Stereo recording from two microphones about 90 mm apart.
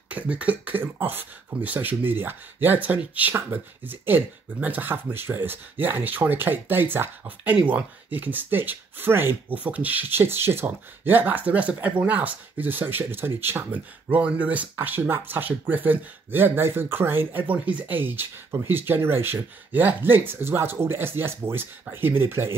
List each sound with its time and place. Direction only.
0.1 s speech: 15° right (ahead or behind)